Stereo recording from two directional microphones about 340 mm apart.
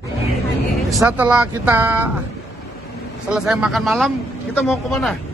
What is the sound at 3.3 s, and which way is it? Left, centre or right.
A man's voice, centre.